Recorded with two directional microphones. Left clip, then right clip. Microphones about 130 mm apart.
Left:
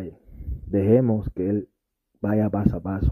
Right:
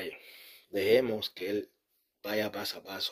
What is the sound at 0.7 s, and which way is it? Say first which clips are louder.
Speech: left 6 dB; 30° left (ahead or behind).